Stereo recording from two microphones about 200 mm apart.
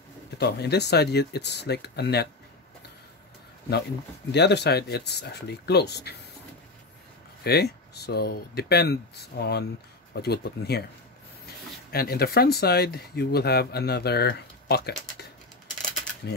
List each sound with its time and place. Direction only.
0.4 s speech: 55° left (ahead or behind)
4.3 s speech: 55° left (ahead or behind)
7.4 s speech: 50° left (ahead or behind)
11.9 s speech: 50° left (ahead or behind)